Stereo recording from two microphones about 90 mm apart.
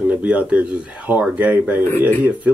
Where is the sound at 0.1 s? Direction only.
15° right (ahead or behind).